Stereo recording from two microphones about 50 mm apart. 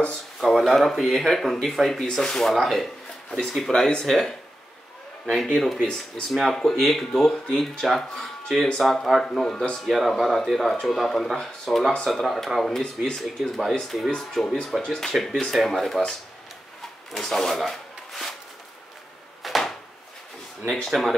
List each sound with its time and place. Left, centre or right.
0.4 s speech: centre
2.0 s speech: centre
17.1 s speech: centre
19.4 s a sound: centre
20.6 s speech: right